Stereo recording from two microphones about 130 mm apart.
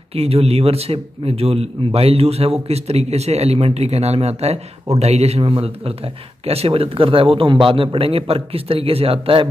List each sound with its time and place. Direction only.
0.1 s a man's voice: 50° right (ahead or behind)